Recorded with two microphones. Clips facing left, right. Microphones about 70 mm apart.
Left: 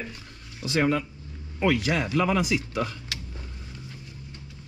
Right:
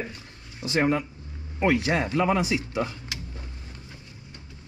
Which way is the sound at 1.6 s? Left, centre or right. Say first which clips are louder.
Right 1 dB; right.